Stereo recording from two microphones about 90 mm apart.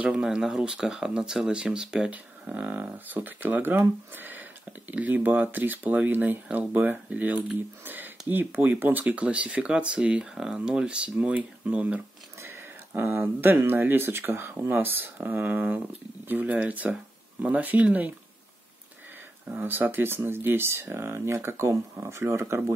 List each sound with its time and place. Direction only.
0.0 s speech: 10° right (ahead or behind)
19.4 s speech: 20° right (ahead or behind)